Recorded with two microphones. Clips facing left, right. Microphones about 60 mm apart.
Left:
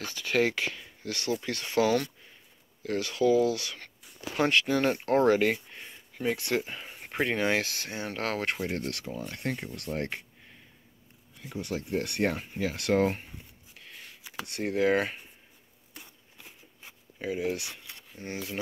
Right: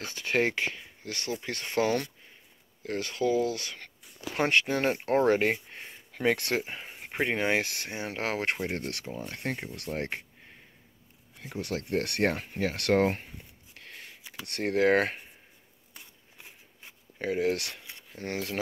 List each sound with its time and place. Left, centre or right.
0.0 s speech: right
11.3 s speech: right
11.6 s speech: right
13.7 s a sound: right
14.5 s speech: right
17.2 s speech: right
18.1 s speech: right